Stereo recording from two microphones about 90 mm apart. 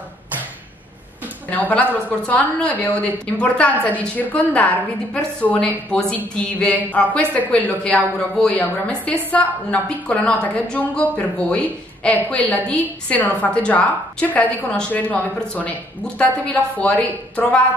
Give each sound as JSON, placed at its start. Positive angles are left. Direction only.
{"t": 1.5, "sound": "a woman's voice", "side_deg": 15}